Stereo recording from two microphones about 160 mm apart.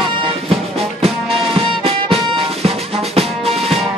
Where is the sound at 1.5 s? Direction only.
35° right (ahead or behind).